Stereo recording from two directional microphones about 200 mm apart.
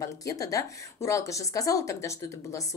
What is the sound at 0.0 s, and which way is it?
A woman's voice, 15° left (ahead or behind).